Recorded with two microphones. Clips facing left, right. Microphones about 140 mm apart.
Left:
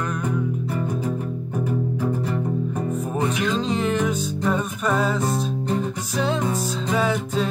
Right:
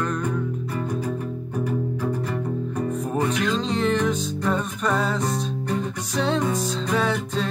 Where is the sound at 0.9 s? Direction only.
25° left (ahead or behind).